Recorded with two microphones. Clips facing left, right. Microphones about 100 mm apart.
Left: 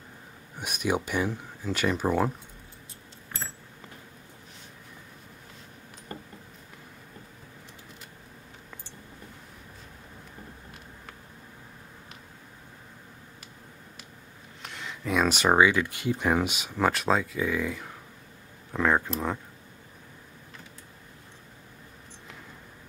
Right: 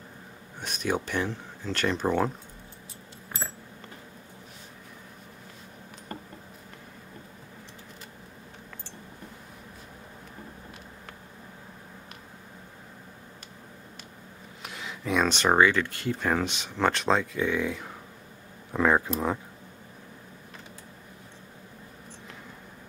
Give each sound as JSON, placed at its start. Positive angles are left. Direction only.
{"t": 0.6, "sound": "speech", "side_deg": 10}
{"t": 14.6, "sound": "speech", "side_deg": -5}